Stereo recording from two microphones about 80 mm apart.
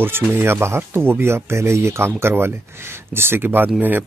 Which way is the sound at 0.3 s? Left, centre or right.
Right.